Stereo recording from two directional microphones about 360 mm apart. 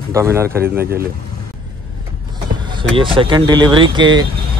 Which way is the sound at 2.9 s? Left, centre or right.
Centre.